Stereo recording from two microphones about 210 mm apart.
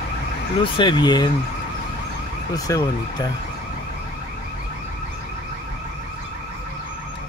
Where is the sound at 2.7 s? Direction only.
15° left (ahead or behind).